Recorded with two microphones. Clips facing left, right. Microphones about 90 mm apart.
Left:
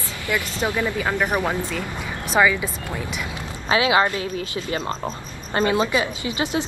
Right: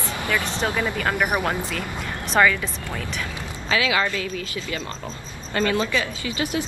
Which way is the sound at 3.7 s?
25° left (ahead or behind).